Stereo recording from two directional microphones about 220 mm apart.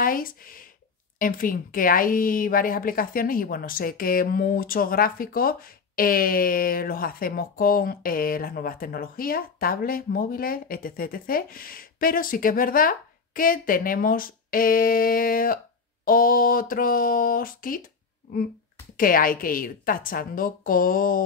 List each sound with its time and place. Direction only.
0.0 s a sound: 40° left (ahead or behind)
1.2 s a woman's voice: 40° left (ahead or behind)
18.9 s a woman's voice: 40° left (ahead or behind)